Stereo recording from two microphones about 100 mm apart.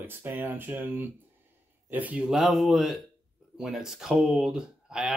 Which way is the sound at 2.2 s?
Centre (ahead or behind).